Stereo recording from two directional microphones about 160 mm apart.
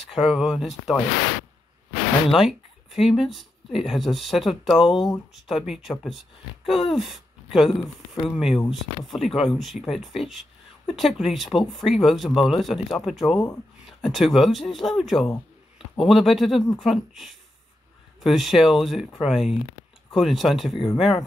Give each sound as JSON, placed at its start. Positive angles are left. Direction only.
{"t": 0.0, "sound": "speech", "side_deg": 0}
{"t": 2.3, "sound": "speech", "side_deg": 0}
{"t": 20.7, "sound": "speech", "side_deg": 30}